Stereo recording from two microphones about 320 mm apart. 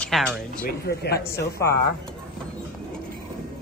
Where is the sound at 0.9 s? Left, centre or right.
Left.